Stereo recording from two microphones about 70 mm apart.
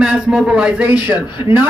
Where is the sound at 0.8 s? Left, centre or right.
Right.